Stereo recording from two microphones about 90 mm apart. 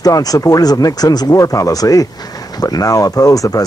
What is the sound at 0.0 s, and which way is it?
Speech, 45° left (ahead or behind).